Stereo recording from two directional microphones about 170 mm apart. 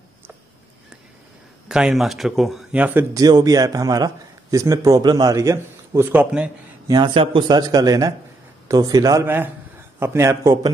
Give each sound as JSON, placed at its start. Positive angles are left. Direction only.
{"t": 1.7, "sound": "speech", "side_deg": -5}
{"t": 6.9, "sound": "speech", "side_deg": -25}